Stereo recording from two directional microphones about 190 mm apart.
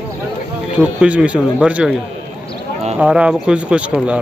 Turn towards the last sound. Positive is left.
turn(degrees=-5)  # may be behind; listen again after turning